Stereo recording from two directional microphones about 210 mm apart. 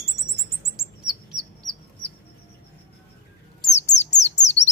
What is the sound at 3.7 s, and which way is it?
Bird, 35° left (ahead or behind).